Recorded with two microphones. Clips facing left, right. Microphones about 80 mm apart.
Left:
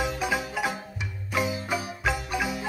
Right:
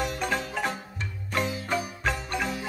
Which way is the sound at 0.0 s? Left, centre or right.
Centre.